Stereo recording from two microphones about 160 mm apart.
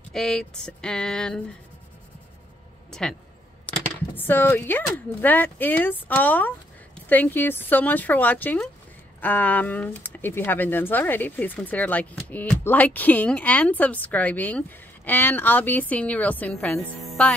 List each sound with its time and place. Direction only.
0.1 s a sound: centre (ahead or behind)
2.9 s speech: 5° left (ahead or behind)
4.2 s speech: 15° left (ahead or behind)